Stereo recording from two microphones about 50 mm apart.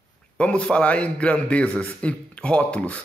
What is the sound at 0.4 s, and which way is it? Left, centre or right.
Speech, left.